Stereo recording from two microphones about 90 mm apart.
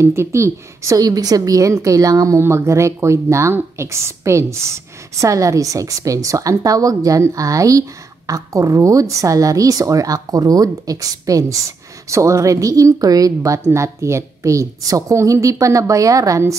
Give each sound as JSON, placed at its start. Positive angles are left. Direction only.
{"t": 0.0, "sound": "a woman's voice", "side_deg": -30}
{"t": 13.7, "sound": "a woman's voice", "side_deg": -30}